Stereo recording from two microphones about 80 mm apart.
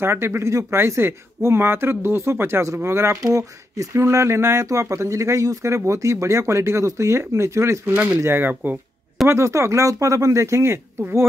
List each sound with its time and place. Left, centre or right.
0.0 s speech: right
3.2 s speech: right
9.3 s speech: right